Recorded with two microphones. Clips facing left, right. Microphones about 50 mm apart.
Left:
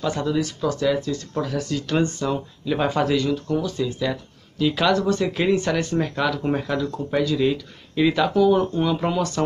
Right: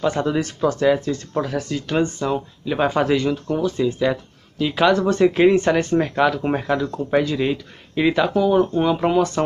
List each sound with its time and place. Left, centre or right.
0.0 s speech: right
4.9 s speech: right
5.9 s speech: right